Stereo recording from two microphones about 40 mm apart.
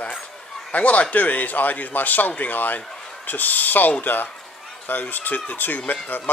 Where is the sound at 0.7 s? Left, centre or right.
Left.